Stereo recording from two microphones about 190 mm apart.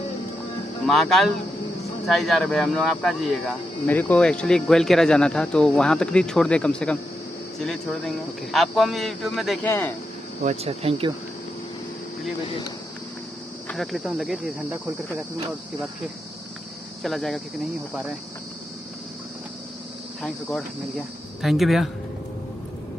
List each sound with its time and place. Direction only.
0.8 s speech: centre (ahead or behind)
9.6 s speech: 10° left (ahead or behind)
10.4 s speech: 35° right (ahead or behind)
13.7 s speech: centre (ahead or behind)
17.0 s speech: centre (ahead or behind)
21.4 s speech: centre (ahead or behind)